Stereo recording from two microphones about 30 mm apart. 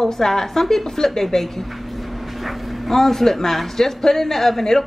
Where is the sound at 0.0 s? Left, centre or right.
Centre.